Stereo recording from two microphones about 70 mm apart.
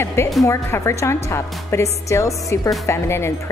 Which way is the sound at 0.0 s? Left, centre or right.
Left.